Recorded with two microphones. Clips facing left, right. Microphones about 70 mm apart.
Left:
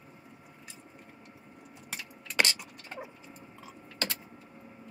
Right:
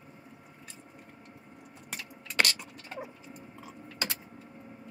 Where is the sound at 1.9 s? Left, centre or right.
Centre.